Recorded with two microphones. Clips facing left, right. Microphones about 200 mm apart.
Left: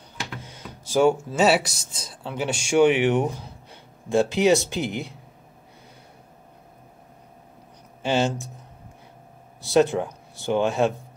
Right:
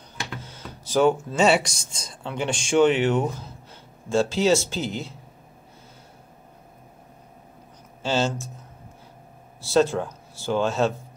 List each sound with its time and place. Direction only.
0.3 s speech: 10° left (ahead or behind)
8.0 s speech: 15° left (ahead or behind)
9.6 s speech: 15° left (ahead or behind)